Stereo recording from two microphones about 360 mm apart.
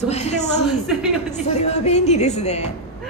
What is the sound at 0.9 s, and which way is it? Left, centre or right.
Speech, centre.